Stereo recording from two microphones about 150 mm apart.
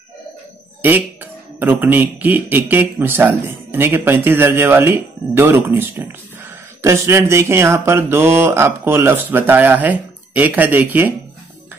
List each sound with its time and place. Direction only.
0.8 s a man's voice: 10° right (ahead or behind)